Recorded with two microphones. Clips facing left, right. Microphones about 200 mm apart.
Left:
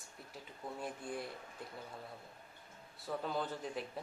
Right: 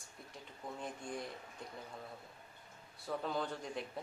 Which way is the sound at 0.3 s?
5° left (ahead or behind).